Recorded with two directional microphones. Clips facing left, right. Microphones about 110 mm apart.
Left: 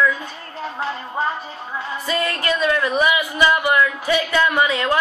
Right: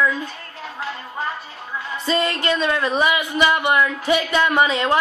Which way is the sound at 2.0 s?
25° right (ahead or behind).